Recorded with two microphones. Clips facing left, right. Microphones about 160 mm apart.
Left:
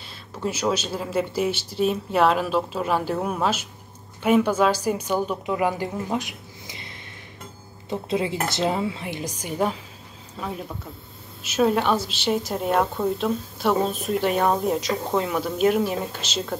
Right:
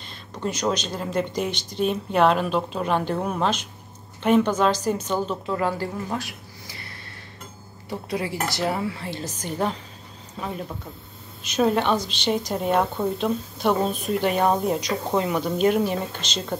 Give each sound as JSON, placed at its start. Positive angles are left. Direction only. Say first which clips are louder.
{"t": 0.0, "sound": "a woman's voice", "louder": "left 1 dB", "side_deg": 5}